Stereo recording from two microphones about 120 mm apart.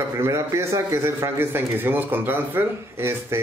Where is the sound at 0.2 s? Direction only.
20° right (ahead or behind).